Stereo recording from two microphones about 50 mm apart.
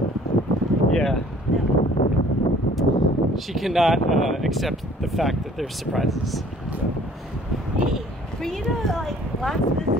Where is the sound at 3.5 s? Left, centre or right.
Centre.